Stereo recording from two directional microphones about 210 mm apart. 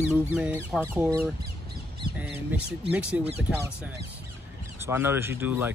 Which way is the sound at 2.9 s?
5° right (ahead or behind).